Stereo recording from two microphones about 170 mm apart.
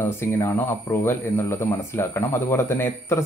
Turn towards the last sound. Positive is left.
turn(degrees=15)  # may be behind; listen again after turning